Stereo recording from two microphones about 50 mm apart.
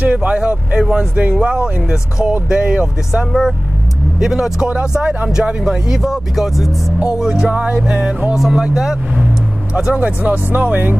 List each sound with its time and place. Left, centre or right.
0.0 s speech: right
1.4 s music: centre
4.2 s speech: centre
4.6 s speech: right
7.5 s music: right
8.4 s speech: centre
9.9 s speech: right